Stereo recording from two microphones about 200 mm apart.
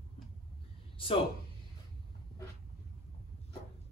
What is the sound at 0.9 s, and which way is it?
Speech, 25° left (ahead or behind).